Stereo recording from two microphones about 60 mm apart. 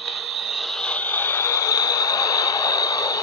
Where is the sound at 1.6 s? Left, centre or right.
Left.